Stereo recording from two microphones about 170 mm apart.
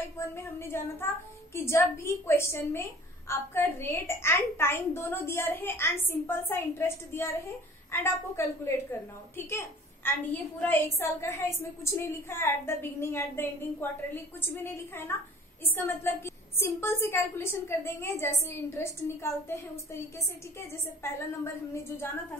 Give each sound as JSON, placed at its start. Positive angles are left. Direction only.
{"t": 0.2, "sound": "a woman's voice", "side_deg": 15}